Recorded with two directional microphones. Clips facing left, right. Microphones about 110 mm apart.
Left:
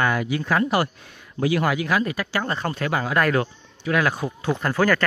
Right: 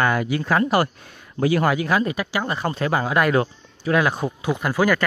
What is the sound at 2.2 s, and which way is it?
Speech, 15° right (ahead or behind).